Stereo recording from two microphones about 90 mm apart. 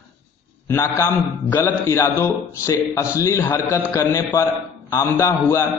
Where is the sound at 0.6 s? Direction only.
30° left (ahead or behind).